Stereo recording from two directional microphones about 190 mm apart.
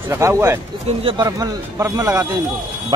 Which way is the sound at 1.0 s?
30° right (ahead or behind).